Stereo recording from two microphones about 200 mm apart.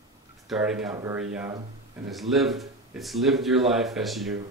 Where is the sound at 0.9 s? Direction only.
15° right (ahead or behind).